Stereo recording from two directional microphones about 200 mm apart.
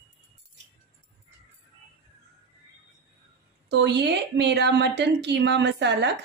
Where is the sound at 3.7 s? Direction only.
60° right (ahead or behind).